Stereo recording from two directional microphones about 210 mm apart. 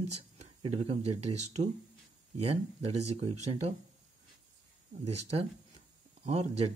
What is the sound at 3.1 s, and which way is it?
Speech, 30° right (ahead or behind).